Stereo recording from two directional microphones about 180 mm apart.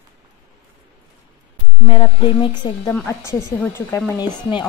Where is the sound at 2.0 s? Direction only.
25° left (ahead or behind).